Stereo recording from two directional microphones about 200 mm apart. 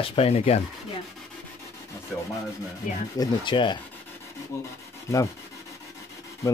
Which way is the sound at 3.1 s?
25° left (ahead or behind).